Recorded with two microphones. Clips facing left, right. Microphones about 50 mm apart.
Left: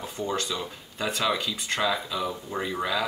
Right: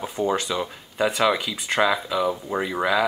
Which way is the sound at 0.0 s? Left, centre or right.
Right.